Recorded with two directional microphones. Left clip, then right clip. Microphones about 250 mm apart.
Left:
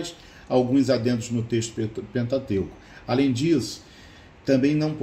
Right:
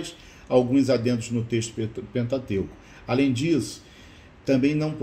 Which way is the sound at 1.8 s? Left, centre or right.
Centre.